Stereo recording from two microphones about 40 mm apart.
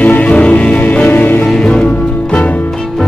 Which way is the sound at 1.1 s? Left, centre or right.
Left.